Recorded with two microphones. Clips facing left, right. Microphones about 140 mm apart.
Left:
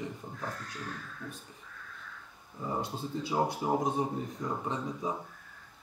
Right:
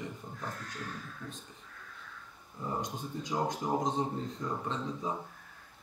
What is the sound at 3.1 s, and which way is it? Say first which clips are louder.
Speech: left 3 dB; 10° left (ahead or behind).